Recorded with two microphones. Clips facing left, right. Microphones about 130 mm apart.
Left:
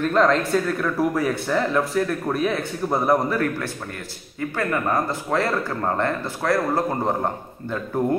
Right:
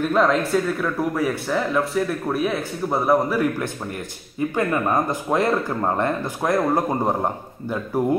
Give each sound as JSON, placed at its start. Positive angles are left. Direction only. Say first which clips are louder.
{"t": 0.0, "sound": "speech", "louder": "even", "side_deg": -5}
{"t": 4.4, "sound": "speech", "louder": "right 3 dB", "side_deg": -20}